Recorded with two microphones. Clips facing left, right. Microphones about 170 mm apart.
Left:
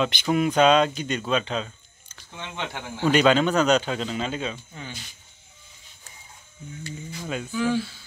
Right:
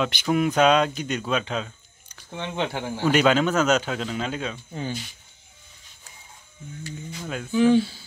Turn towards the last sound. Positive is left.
turn(degrees=-25)  # may be behind; listen again after turning